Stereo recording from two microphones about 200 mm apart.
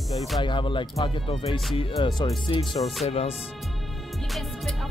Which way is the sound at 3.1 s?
30° left (ahead or behind).